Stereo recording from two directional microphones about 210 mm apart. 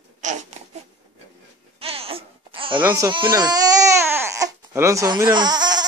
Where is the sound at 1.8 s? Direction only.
25° right (ahead or behind).